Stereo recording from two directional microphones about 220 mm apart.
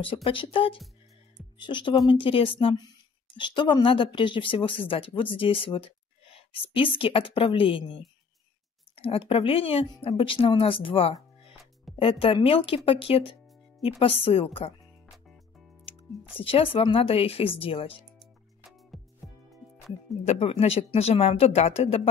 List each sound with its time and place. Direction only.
0.0 s speech: 25° left (ahead or behind)
8.9 s a sound: 25° left (ahead or behind)
9.3 s speech: 25° left (ahead or behind)
15.9 s music: 25° left (ahead or behind)
16.3 s speech: 25° left (ahead or behind)
18.9 s music: centre (ahead or behind)
20.2 s speech: 25° left (ahead or behind)